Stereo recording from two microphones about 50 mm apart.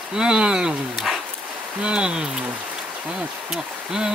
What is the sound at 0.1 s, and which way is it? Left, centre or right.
Speech, centre.